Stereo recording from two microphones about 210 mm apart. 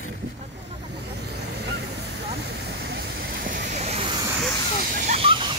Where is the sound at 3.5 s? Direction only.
35° right (ahead or behind).